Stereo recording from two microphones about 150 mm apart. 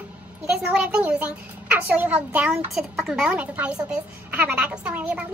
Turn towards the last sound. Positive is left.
turn(degrees=-10)  # may be behind; listen again after turning